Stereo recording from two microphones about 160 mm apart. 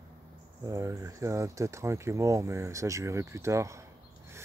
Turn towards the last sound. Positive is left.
turn(degrees=-20)  # may be behind; listen again after turning